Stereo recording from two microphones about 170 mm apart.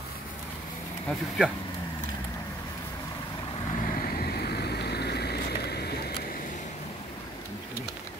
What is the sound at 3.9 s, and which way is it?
Vehicle, 60° left (ahead or behind).